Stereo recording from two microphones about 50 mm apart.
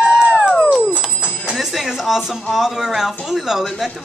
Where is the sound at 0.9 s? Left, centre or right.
Centre.